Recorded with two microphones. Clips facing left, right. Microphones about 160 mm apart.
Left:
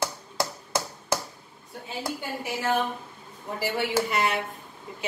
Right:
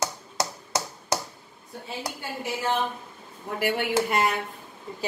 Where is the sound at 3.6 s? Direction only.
60° right (ahead or behind).